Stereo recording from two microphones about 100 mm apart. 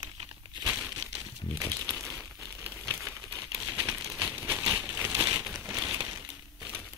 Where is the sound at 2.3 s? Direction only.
25° right (ahead or behind).